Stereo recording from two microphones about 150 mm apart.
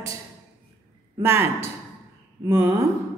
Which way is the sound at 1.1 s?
15° right (ahead or behind).